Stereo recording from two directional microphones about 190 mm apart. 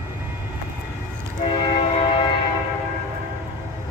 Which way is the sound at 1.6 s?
30° left (ahead or behind).